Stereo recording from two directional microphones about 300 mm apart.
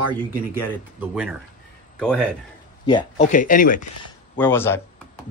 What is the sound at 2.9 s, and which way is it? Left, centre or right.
Speech, centre.